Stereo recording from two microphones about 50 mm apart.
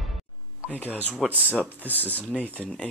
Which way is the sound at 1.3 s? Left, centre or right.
Right.